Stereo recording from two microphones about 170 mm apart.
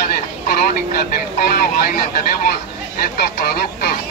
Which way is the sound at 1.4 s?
55° left (ahead or behind).